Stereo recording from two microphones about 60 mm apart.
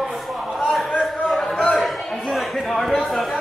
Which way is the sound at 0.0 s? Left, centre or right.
Centre.